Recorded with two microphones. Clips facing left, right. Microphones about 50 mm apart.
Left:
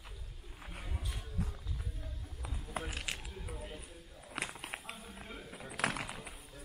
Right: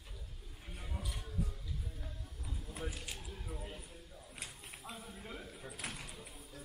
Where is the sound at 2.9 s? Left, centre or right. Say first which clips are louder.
Left 5 dB; left.